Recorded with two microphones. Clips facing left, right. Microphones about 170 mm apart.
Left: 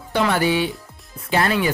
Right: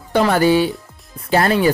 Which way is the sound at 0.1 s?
40° right (ahead or behind).